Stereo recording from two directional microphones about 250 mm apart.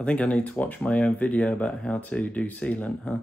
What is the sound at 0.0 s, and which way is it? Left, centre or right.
Speech, centre.